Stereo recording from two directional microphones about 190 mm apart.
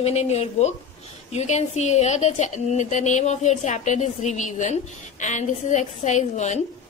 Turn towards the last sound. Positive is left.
turn(degrees=40)  # may be behind; listen again after turning